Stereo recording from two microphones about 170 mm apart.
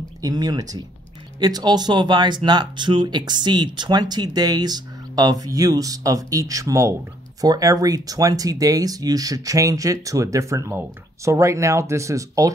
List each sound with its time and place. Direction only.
0.2 s speech: 20° right (ahead or behind)